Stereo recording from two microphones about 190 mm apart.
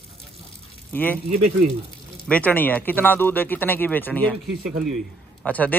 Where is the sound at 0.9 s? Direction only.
10° left (ahead or behind).